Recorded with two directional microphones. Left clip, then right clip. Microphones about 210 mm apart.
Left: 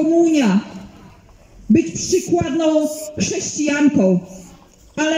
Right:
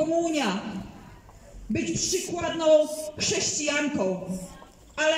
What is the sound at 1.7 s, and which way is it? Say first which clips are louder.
Speech: left 11 dB; 40° left (ahead or behind).